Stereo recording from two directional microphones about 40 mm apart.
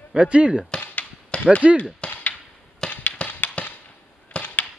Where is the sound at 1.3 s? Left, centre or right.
Left.